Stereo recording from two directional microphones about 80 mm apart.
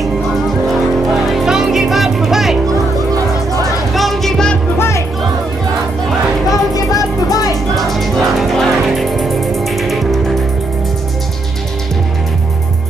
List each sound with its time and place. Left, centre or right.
1.3 s music: centre
3.9 s music: centre
4.7 s music: left
6.7 s music: left
7.7 s music: centre